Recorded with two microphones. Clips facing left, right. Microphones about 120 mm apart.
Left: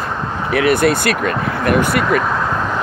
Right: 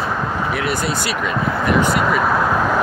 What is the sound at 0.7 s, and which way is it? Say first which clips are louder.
Speech: left 7 dB; 60° left (ahead or behind).